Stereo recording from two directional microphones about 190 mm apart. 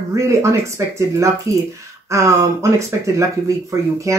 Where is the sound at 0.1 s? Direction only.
15° right (ahead or behind).